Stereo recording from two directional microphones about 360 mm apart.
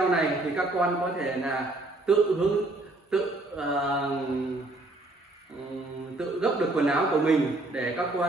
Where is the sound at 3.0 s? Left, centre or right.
Centre.